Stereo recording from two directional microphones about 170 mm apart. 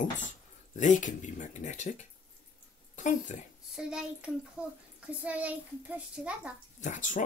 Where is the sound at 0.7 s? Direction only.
45° left (ahead or behind).